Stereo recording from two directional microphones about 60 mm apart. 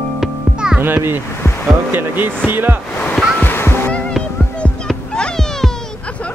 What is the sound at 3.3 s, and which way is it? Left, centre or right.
Music, left.